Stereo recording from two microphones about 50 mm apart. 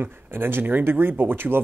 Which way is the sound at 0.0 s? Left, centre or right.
Right.